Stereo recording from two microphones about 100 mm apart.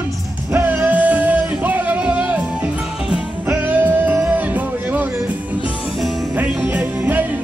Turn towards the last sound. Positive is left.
turn(degrees=-15)  # may be behind; listen again after turning